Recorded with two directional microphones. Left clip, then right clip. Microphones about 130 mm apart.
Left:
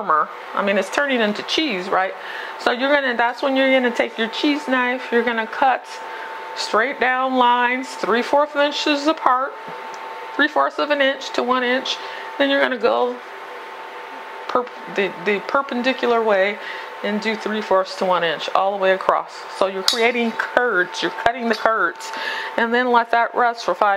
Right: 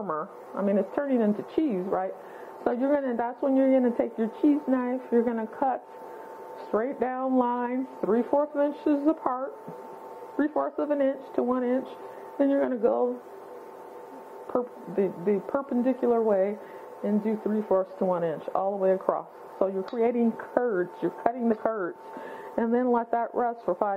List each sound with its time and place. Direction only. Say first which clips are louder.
0.0 s speech: left 13 dB; 25° right (ahead or behind)
0.7 s speech: left 7 dB; 40° right (ahead or behind)
1.9 s speech: left 9 dB; 35° right (ahead or behind)
8.6 s speech: left 7 dB; 50° right (ahead or behind)
9.2 s speech: left 12 dB; 30° right (ahead or behind)
10.4 s speech: left 10 dB; 50° right (ahead or behind)
14.5 s speech: left 8 dB; 30° right (ahead or behind)
15.0 s speech: left 6 dB; 40° right (ahead or behind)